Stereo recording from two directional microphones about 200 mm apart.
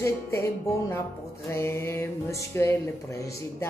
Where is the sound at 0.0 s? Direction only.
15° left (ahead or behind).